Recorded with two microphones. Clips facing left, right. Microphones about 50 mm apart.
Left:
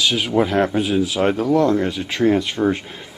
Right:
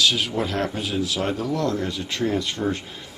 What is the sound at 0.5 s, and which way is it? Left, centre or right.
Speech, left.